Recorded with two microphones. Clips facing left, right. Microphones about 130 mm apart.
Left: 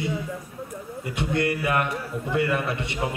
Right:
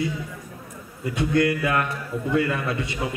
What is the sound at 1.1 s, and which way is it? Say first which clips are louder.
A man's voice: right 4 dB; 25° left (ahead or behind).